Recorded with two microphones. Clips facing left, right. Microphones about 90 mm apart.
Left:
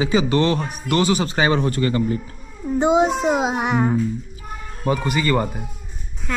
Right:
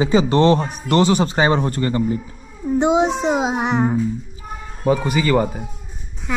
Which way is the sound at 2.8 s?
Centre (ahead or behind).